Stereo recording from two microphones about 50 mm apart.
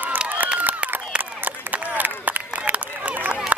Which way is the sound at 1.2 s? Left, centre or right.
Right.